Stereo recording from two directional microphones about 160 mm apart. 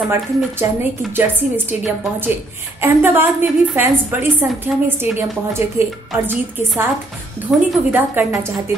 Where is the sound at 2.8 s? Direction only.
15° right (ahead or behind).